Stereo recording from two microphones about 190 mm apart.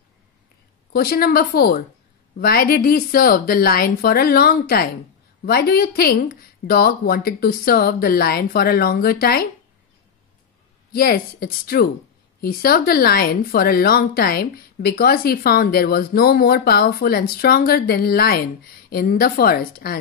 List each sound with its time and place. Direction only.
0.9 s speech: 55° left (ahead or behind)
10.9 s speech: 55° left (ahead or behind)